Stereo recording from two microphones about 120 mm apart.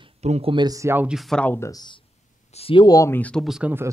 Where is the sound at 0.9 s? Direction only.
5° right (ahead or behind).